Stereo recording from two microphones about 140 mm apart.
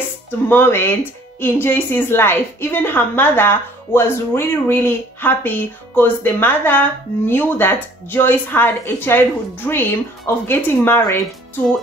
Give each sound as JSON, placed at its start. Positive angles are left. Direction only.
{"t": 0.5, "sound": "a woman's voice", "side_deg": 15}